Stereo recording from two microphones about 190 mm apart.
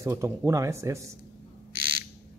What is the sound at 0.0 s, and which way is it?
Speech, 15° right (ahead or behind).